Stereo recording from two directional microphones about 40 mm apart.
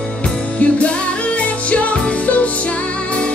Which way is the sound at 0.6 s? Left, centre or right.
Left.